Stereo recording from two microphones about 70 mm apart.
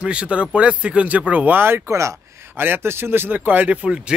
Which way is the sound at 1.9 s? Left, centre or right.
Right.